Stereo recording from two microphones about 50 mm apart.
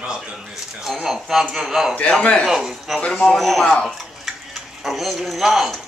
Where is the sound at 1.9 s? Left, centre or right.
Left.